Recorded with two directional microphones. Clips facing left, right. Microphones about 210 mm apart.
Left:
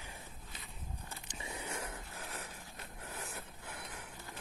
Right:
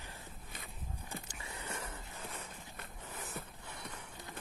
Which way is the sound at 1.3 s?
20° left (ahead or behind).